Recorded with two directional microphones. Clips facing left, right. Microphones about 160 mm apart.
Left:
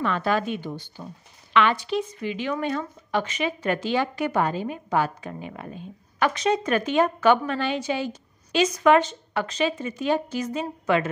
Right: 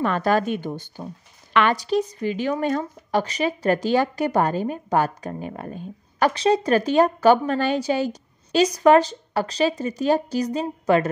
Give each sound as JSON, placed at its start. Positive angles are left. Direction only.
{"t": 0.0, "sound": "a woman's voice", "side_deg": -45}